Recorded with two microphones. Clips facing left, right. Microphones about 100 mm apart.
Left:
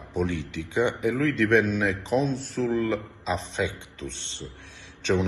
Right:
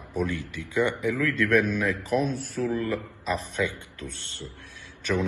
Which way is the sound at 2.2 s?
5° right (ahead or behind).